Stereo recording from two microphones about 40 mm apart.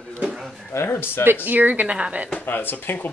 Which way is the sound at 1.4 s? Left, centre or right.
Right.